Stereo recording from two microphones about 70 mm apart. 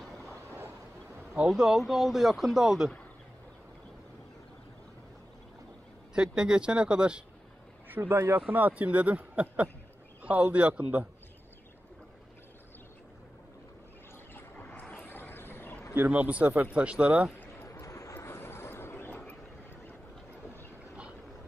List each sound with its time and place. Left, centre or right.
0.5 s vehicle: right
1.5 s speech: centre
6.1 s speech: centre
7.9 s speech: right
14.3 s vehicle: left
15.0 s vehicle: left
15.9 s speech: right
17.6 s boat: left
18.1 s vehicle: left